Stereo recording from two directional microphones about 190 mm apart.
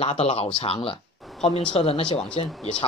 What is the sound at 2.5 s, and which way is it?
Speech, 5° left (ahead or behind).